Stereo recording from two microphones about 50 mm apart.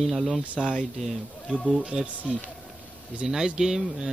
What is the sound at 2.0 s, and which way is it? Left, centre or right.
Speech, right.